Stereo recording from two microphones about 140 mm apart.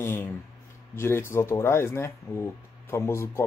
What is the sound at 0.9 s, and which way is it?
Speech, 15° left (ahead or behind).